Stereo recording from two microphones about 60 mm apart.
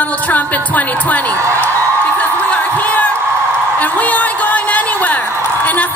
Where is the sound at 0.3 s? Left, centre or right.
Left.